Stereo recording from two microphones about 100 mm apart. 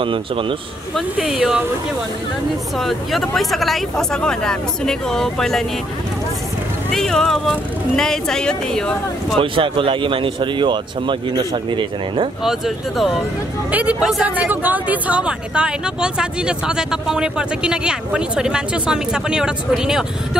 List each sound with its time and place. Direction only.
0.0 s speech: 60° right (ahead or behind)
0.9 s speech: centre (ahead or behind)
2.8 s speech: centre (ahead or behind)
6.9 s speech: 5° left (ahead or behind)
9.4 s speech: 60° right (ahead or behind)
12.4 s speech: centre (ahead or behind)
13.7 s speech: 15° right (ahead or behind)